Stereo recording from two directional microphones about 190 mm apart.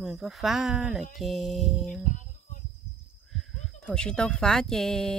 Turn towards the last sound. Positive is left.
turn(degrees=0)  # may be behind; listen again after turning